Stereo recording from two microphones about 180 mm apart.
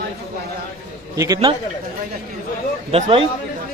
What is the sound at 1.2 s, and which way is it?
Speech, 20° right (ahead or behind).